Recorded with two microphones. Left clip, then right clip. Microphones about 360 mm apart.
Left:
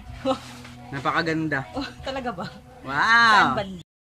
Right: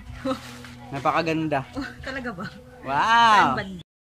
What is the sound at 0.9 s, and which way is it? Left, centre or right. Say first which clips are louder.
Speech: right 1 dB; centre.